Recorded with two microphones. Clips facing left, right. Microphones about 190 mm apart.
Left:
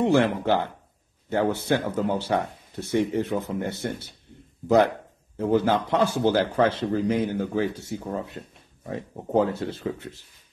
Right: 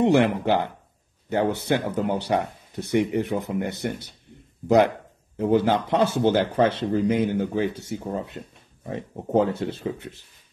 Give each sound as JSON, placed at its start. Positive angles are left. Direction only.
{"t": 0.0, "sound": "speech", "side_deg": -15}